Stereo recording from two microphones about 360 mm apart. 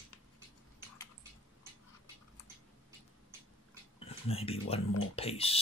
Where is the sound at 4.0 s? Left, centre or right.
Centre.